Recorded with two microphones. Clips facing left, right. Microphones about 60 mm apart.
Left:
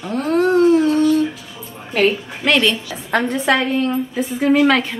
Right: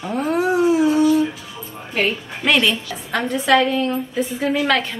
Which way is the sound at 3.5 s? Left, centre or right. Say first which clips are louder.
Right 2 dB; centre.